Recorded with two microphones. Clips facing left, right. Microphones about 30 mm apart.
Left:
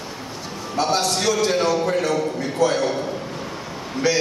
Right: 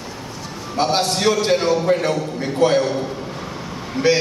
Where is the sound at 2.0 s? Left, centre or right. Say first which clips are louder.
Even; right.